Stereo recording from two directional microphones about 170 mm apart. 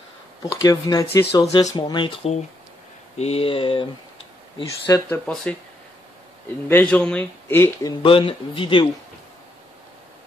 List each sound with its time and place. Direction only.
0.6 s speech: 20° left (ahead or behind)
4.6 s speech: 20° left (ahead or behind)
5.2 s speech: 5° left (ahead or behind)
6.7 s speech: 10° left (ahead or behind)
8.0 s speech: 30° left (ahead or behind)